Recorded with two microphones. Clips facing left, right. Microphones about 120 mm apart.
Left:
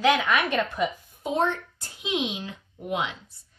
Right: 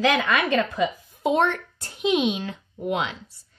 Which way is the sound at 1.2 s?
75° right (ahead or behind).